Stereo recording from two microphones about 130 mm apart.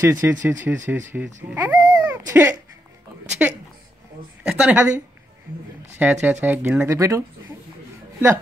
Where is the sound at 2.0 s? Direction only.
15° right (ahead or behind).